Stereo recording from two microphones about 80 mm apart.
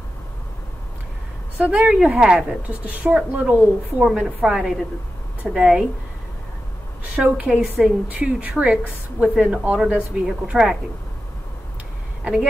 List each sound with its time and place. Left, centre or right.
1.6 s a woman's voice: centre
7.2 s a woman's voice: centre